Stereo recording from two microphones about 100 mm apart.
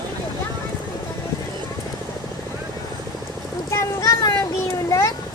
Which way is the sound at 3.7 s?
30° left (ahead or behind).